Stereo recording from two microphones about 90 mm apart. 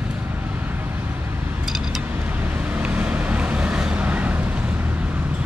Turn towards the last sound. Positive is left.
turn(degrees=-15)  # may be behind; listen again after turning